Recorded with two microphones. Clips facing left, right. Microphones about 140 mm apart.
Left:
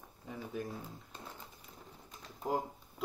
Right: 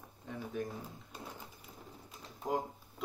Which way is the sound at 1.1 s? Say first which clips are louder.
Right 4 dB; 10° right (ahead or behind).